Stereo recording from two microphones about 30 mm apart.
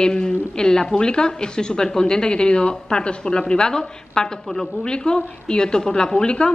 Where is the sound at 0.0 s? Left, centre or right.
Left.